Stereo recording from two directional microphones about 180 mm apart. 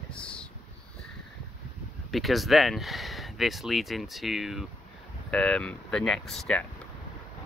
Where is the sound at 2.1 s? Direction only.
Centre (ahead or behind).